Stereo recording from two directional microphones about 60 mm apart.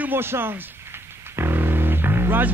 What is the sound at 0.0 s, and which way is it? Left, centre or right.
Music, right.